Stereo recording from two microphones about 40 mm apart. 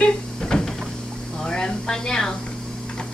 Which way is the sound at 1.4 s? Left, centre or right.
Centre.